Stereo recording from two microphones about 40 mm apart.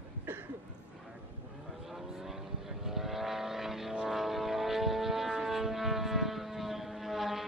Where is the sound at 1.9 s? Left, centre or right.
Centre.